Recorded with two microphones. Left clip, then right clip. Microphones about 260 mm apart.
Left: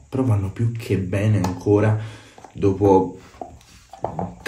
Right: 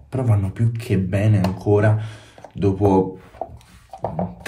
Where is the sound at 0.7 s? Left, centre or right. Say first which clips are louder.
Even; centre.